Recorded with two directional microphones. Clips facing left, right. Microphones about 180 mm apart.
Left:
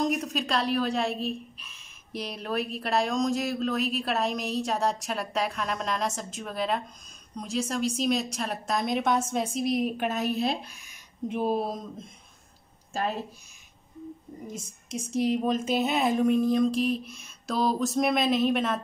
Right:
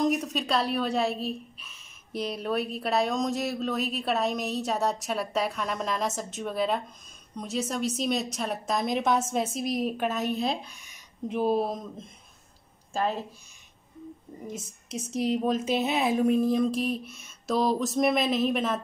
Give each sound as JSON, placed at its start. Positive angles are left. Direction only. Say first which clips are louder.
{"t": 0.0, "sound": "a woman's voice", "louder": "right 1 dB", "side_deg": 0}
{"t": 14.9, "sound": "a woman's voice", "louder": "left 1 dB", "side_deg": -5}